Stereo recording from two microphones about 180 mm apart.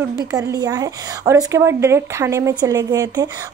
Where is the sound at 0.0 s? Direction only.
20° right (ahead or behind).